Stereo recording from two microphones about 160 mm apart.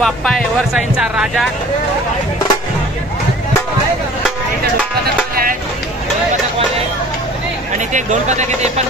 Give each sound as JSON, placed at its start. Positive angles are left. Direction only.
{"t": 0.0, "sound": "speech", "side_deg": 0}
{"t": 5.3, "sound": "a sound", "side_deg": -65}
{"t": 7.9, "sound": "speech", "side_deg": -50}